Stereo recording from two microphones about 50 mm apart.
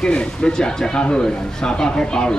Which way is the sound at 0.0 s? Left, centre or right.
Centre.